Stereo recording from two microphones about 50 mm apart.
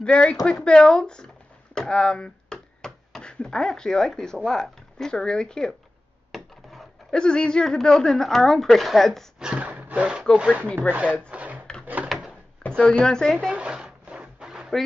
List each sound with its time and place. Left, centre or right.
0.0 s speech: centre
1.8 s a sound: centre
3.3 s speech: centre
6.3 s a sound: centre
7.1 s speech: centre
9.4 s a sound: centre
9.7 s roaring cats: right
10.3 s speech: right
11.2 s wood: right
11.8 s drawer open or close: right
12.6 s speech: centre
13.5 s speech: right
14.0 s a sound: right